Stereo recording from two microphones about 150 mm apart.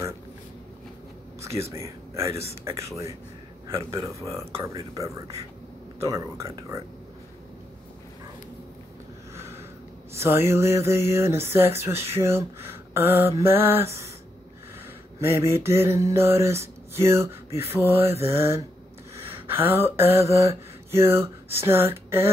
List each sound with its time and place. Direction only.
1.4 s speech: 20° right (ahead or behind)
9.3 s a sound: 20° right (ahead or behind)
10.1 s mantra: 15° right (ahead or behind)
12.6 s a sound: 15° right (ahead or behind)
13.4 s mantra: 15° right (ahead or behind)
15.1 s mantra: 15° right (ahead or behind)